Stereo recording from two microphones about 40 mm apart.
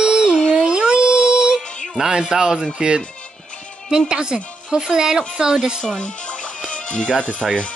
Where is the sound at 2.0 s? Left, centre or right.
Centre.